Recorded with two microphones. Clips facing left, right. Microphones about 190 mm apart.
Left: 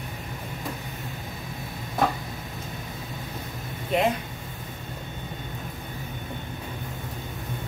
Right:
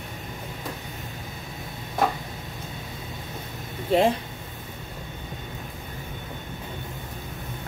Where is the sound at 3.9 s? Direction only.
30° right (ahead or behind).